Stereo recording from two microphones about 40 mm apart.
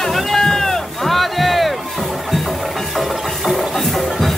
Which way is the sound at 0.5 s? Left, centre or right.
Centre.